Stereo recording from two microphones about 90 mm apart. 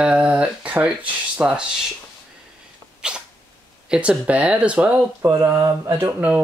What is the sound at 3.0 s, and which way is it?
Cat, 10° right (ahead or behind).